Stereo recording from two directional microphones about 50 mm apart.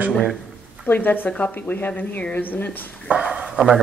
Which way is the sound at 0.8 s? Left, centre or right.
Left.